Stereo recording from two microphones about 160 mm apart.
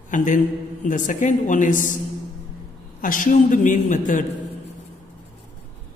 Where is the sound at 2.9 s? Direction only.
55° left (ahead or behind).